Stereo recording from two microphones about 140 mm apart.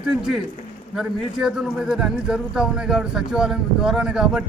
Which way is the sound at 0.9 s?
5° right (ahead or behind).